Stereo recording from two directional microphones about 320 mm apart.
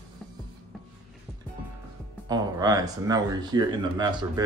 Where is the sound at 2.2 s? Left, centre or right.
Centre.